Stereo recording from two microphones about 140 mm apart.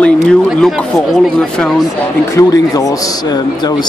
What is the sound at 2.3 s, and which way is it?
Speech, 25° left (ahead or behind).